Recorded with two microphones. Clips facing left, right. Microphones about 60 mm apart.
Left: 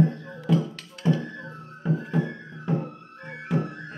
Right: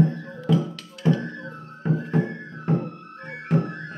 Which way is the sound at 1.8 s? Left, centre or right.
Right.